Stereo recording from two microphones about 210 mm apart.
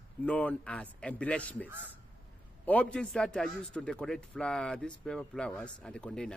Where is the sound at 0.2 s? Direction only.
5° left (ahead or behind).